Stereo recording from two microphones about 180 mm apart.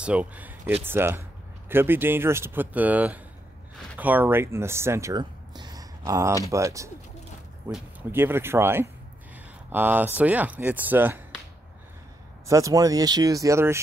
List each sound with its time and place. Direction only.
0.0 s speech: 5° right (ahead or behind)
12.4 s speech: 20° right (ahead or behind)